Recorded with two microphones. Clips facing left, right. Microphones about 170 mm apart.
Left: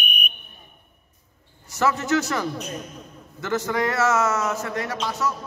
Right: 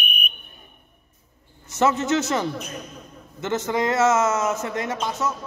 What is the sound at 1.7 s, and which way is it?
A man's voice, 20° right (ahead or behind).